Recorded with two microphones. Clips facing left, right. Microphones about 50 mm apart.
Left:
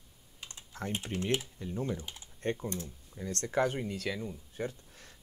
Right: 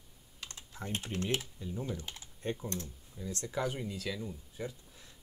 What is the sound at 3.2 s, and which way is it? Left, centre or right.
Speech, left.